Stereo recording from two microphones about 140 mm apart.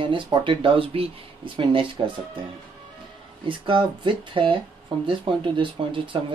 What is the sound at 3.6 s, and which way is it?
Speech, 35° right (ahead or behind).